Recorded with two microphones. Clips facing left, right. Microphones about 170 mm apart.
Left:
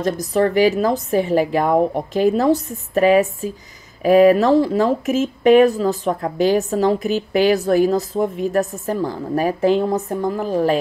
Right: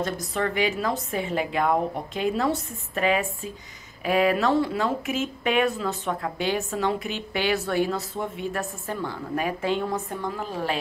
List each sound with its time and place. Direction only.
0.0 s a woman's voice: 40° left (ahead or behind)